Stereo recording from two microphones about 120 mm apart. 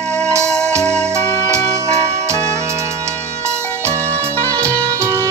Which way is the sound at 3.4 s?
20° right (ahead or behind).